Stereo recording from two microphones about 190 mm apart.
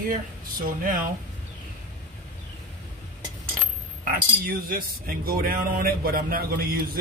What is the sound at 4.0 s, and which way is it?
Speech, 50° right (ahead or behind).